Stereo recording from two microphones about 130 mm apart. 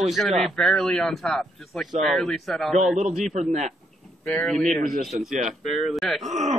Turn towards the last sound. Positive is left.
turn(degrees=-65)  # may be behind; listen again after turning